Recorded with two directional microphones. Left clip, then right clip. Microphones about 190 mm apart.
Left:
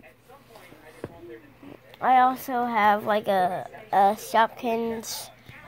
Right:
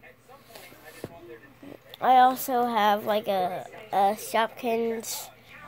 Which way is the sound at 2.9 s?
Centre (ahead or behind).